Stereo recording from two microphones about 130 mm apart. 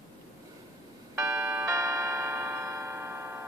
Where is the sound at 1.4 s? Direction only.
15° right (ahead or behind).